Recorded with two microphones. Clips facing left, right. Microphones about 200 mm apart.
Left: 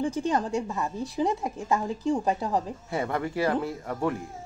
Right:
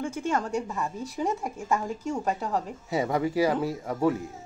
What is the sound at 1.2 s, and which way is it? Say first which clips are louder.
Speech: left 2 dB; 15° left (ahead or behind).